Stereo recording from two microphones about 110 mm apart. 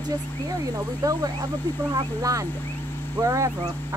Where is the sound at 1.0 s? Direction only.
35° right (ahead or behind).